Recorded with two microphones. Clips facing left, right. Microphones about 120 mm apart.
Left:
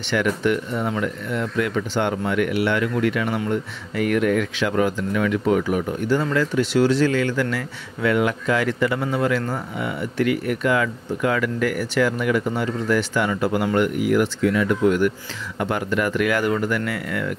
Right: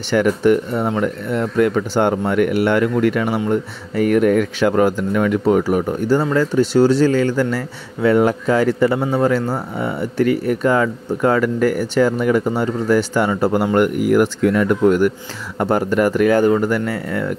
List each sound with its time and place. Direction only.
0.1 s speech: 40° right (ahead or behind)
13.7 s speech: 45° right (ahead or behind); by 17.3 s 30° right (ahead or behind)